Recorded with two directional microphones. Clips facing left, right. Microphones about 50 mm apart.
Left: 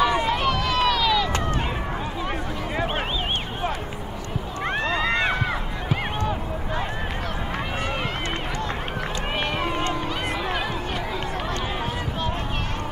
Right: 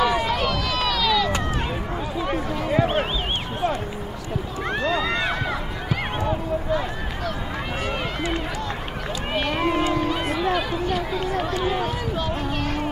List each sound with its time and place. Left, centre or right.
0.0 s run: centre
2.2 s a sound: centre
4.6 s run: left
10.5 s chatter: centre
11.6 s run: centre